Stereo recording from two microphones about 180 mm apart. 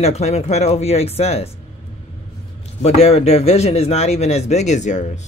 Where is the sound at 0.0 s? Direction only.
35° left (ahead or behind).